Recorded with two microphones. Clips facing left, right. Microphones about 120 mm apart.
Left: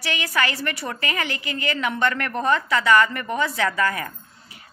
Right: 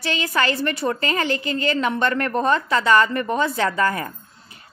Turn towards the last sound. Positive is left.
turn(degrees=-30)  # may be behind; listen again after turning